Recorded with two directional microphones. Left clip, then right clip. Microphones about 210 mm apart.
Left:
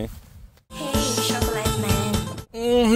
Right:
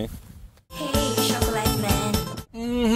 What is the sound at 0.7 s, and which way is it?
Music, centre (ahead or behind).